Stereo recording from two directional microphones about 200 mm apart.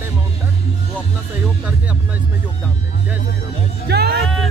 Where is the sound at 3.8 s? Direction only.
55° right (ahead or behind).